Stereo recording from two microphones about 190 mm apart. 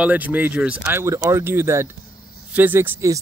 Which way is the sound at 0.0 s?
10° right (ahead or behind).